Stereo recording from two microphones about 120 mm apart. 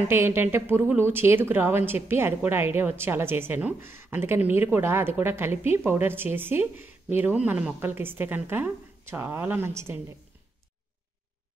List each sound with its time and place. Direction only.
0.1 s a woman's voice: 20° right (ahead or behind)